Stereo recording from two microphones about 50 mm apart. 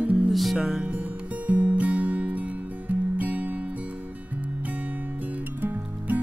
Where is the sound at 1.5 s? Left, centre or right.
Right.